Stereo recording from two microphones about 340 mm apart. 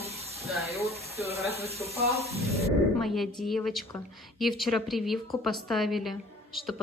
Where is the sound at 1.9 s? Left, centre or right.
Centre.